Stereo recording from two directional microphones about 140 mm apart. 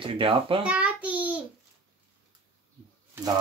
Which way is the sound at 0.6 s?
10° right (ahead or behind).